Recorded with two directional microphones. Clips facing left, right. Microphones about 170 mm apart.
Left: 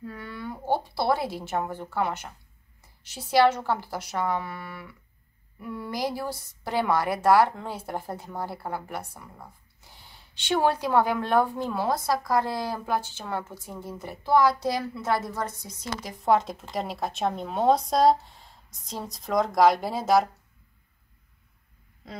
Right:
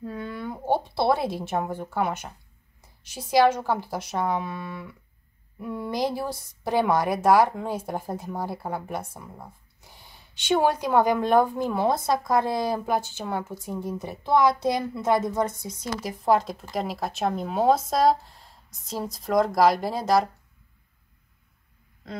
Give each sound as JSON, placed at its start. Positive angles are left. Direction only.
{"t": 0.0, "sound": "a woman's voice", "side_deg": -20}
{"t": 5.7, "sound": "speech", "side_deg": -20}
{"t": 10.5, "sound": "speech", "side_deg": -15}
{"t": 16.0, "sound": "speech", "side_deg": -5}